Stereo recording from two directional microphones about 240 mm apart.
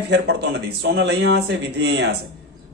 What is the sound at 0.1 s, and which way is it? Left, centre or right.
A man's voice, right.